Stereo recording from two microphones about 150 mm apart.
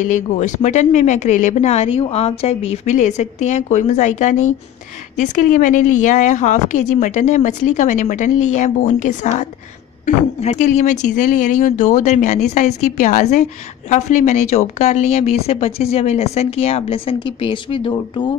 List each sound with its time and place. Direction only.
0.0 s a woman's voice: 55° left (ahead or behind); by 18.2 s 35° left (ahead or behind)